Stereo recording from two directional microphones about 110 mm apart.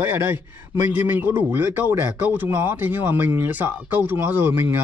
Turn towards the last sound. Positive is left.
turn(degrees=-20)  # may be behind; listen again after turning